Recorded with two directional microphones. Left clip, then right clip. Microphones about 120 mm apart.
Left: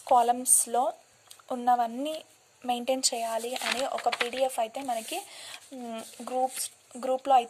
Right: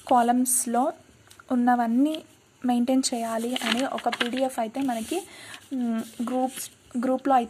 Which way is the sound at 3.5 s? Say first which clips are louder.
Right 3 dB; 15° right (ahead or behind).